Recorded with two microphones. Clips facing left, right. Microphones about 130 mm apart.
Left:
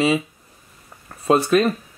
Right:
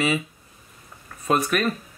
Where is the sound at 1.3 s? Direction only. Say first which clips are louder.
Left 6 dB; 30° left (ahead or behind).